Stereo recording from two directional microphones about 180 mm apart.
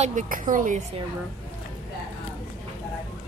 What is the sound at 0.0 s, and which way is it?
Speech, 45° right (ahead or behind).